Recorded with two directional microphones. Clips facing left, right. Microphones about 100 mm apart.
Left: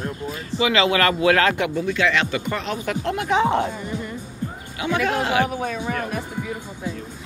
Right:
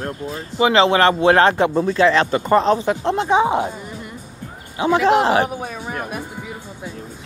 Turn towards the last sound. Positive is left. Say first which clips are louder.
# left 2 dB
turn(degrees=-15)  # may be behind; listen again after turning